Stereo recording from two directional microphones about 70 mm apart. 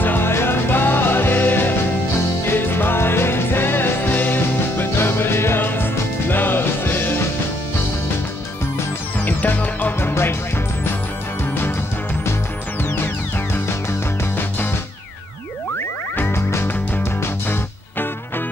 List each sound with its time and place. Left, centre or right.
0.0 s music: left
9.2 s music: left
16.2 s music: left